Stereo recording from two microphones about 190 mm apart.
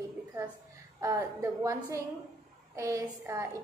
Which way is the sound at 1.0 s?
15° right (ahead or behind).